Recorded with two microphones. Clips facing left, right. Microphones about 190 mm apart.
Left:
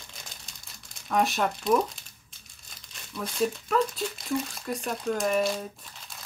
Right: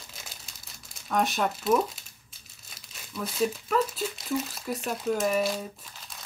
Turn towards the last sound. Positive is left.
turn(degrees=-5)  # may be behind; listen again after turning